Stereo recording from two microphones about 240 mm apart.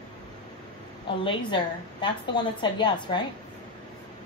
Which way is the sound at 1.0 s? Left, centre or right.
Centre.